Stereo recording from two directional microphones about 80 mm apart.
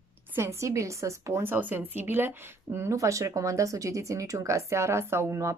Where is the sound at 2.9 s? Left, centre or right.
Right.